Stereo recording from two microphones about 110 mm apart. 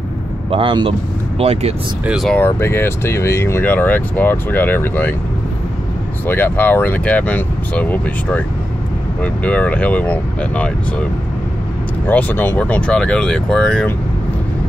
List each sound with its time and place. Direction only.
0.5 s speech: 55° right (ahead or behind)
1.4 s speech: 75° right (ahead or behind)
2.3 s speech: 20° left (ahead or behind)
6.2 s speech: 15° left (ahead or behind)
12.1 s speech: 15° left (ahead or behind)